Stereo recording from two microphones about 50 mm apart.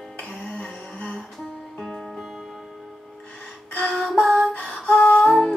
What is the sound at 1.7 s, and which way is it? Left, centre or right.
Music, centre.